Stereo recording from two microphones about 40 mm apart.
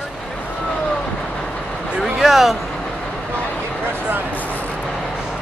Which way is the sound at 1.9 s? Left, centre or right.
Centre.